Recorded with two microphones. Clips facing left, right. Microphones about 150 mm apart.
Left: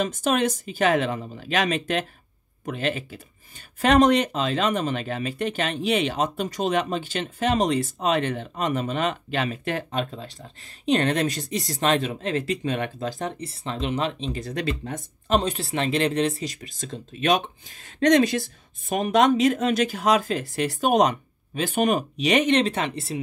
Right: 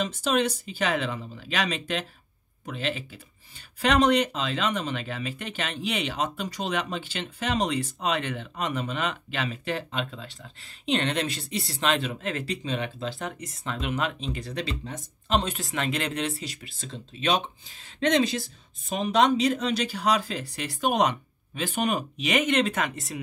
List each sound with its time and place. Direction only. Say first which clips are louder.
0.0 s speech: left 3 dB; 50° left (ahead or behind)
12.6 s speech: left 4 dB; 55° left (ahead or behind)
13.2 s speech: left 4 dB; 30° left (ahead or behind)
14.3 s speech: left 4 dB; 45° left (ahead or behind)
16.9 s speech: left 4 dB; 55° left (ahead or behind); by 23.1 s 30° left (ahead or behind)